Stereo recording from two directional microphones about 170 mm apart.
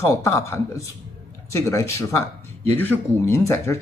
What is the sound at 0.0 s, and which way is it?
Speech, 15° left (ahead or behind).